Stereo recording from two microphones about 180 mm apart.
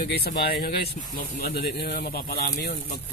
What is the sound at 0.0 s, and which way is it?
Speech, 55° left (ahead or behind).